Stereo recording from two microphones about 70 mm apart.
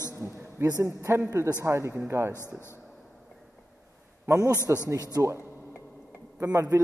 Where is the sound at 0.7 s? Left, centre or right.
Right.